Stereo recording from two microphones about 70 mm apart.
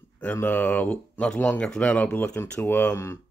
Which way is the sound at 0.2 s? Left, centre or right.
Left.